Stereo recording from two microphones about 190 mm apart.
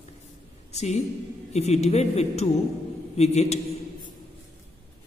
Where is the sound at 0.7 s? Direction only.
35° left (ahead or behind).